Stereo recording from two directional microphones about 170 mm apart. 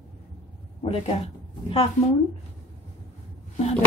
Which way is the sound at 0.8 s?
35° left (ahead or behind).